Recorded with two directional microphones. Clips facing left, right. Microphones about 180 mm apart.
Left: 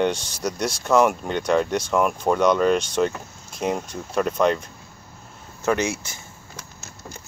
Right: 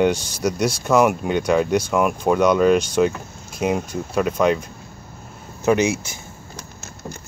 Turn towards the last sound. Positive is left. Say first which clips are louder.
# right 5 dB
turn(degrees=-55)  # may be behind; listen again after turning